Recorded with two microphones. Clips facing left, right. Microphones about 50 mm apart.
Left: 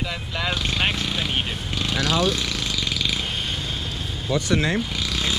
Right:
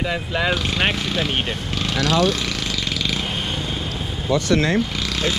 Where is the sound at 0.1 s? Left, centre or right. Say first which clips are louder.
Right 6 dB; centre.